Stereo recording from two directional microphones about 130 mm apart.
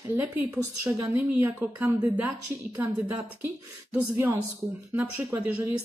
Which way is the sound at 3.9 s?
15° right (ahead or behind).